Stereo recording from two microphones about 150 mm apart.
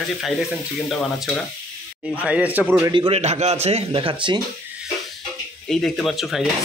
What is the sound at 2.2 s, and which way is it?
Speech, 10° right (ahead or behind).